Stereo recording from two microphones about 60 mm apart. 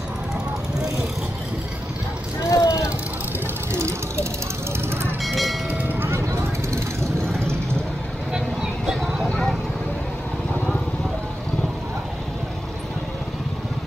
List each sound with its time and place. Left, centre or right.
2.5 s vehicle: left
3.7 s vehicle: right
5.2 s music: centre
5.7 s a sound: right
6.3 s vehicle: right
8.3 s vehicle: centre